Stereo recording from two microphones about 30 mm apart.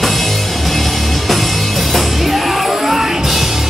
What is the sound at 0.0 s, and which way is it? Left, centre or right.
Music, centre.